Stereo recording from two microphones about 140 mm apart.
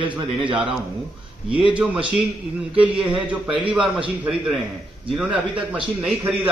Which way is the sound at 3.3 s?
10° right (ahead or behind).